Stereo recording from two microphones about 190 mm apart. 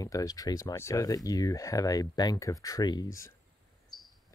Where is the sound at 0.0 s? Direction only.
20° left (ahead or behind).